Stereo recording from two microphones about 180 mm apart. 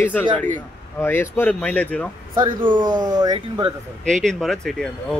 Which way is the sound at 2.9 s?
20° right (ahead or behind).